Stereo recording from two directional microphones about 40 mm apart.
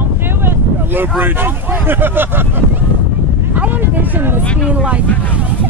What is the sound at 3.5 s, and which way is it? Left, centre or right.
Speech, right.